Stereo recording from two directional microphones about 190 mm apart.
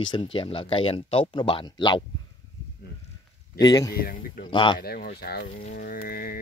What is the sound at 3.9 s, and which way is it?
Speech, 50° left (ahead or behind).